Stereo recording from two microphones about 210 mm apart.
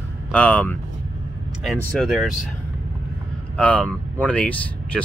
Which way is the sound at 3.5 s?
5° left (ahead or behind).